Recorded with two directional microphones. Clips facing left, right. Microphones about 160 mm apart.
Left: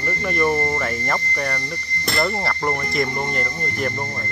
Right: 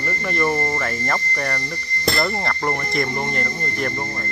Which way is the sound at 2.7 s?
Centre (ahead or behind).